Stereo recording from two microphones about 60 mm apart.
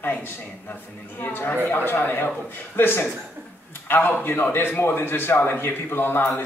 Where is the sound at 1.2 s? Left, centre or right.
Left.